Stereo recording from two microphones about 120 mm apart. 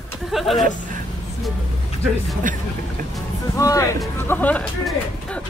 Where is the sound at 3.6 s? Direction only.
30° left (ahead or behind); by 5.4 s 10° left (ahead or behind).